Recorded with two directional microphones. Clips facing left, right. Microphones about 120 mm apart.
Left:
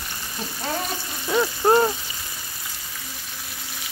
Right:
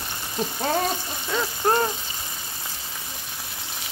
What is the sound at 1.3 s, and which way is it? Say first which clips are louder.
Speech: left 5 dB; 15° left (ahead or behind).